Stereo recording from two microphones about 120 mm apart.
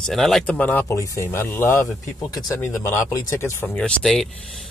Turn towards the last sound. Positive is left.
turn(degrees=5)  # may be behind; listen again after turning